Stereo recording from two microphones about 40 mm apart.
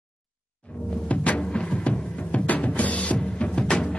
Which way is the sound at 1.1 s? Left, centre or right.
Left.